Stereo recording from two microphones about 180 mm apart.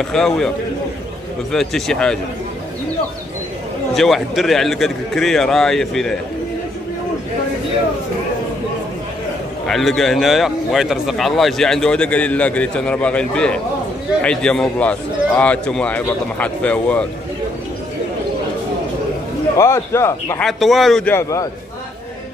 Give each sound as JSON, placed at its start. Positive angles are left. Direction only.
{"t": 0.0, "sound": "speech", "side_deg": 5}
{"t": 1.5, "sound": "speech", "side_deg": 0}
{"t": 3.9, "sound": "speech", "side_deg": 0}
{"t": 9.7, "sound": "a man's voice", "side_deg": 0}
{"t": 19.5, "sound": "a man's voice", "side_deg": 15}
{"t": 20.4, "sound": "speech", "side_deg": 0}
{"t": 21.1, "sound": "a man's voice", "side_deg": 15}